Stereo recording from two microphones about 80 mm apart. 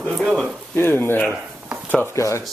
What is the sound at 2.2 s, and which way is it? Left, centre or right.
Speech, left.